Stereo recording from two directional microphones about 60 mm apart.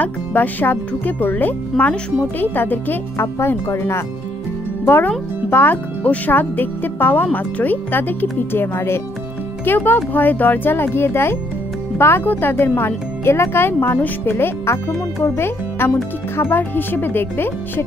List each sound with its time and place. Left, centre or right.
0.0 s speech: left
3.3 s a child's voice: left